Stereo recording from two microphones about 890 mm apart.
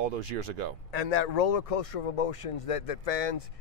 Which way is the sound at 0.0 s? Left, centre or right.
Right.